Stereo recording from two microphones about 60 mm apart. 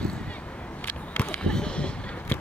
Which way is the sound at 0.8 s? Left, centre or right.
Left.